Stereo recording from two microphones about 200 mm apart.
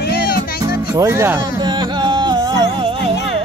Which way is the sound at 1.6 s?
25° right (ahead or behind).